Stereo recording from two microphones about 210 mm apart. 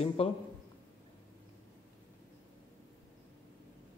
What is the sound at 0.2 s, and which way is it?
Speech, 30° left (ahead or behind).